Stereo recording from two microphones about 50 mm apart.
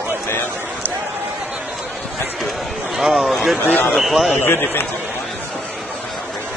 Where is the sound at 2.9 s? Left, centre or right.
Centre.